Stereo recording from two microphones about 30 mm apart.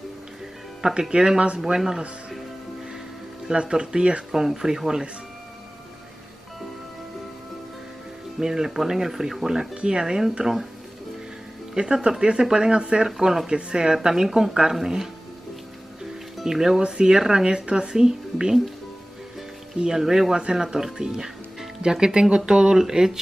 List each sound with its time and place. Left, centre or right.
0.9 s speech: right
1.6 s speech: centre
3.5 s speech: right
4.3 s speech: centre
8.4 s speech: centre
9.8 s speech: right
10.4 s speech: centre
11.7 s speech: right
14.0 s speech: centre
16.4 s speech: centre
17.6 s speech: right
17.9 s speech: right
19.9 s speech: centre
22.8 s speech: centre